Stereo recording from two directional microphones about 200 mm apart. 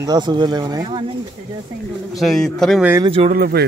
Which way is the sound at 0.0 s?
20° right (ahead or behind).